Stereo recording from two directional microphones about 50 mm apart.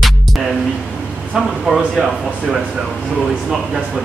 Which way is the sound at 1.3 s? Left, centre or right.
Centre.